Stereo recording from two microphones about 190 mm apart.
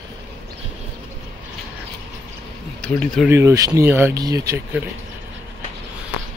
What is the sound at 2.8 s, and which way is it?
Speech, 5° left (ahead or behind).